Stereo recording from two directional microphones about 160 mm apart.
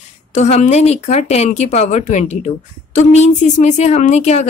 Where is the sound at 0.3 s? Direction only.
45° left (ahead or behind).